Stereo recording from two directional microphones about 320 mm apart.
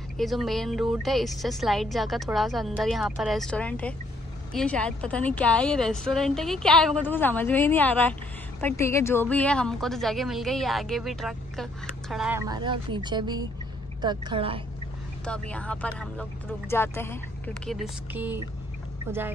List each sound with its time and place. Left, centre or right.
0.2 s a woman's voice: centre
15.2 s a woman's voice: centre